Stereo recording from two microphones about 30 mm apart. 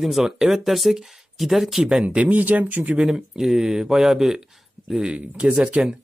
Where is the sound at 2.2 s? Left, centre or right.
Right.